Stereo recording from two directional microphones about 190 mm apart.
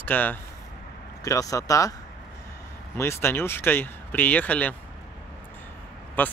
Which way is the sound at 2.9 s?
15° left (ahead or behind).